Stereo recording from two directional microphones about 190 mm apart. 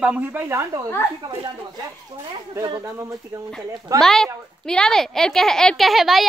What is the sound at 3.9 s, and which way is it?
Speech, centre (ahead or behind).